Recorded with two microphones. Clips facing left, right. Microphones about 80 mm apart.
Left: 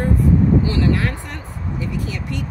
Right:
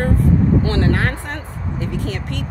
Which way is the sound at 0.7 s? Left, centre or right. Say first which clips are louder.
Right 1 dB; right.